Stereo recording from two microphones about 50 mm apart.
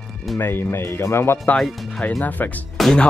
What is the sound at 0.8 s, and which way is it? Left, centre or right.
Speech, left.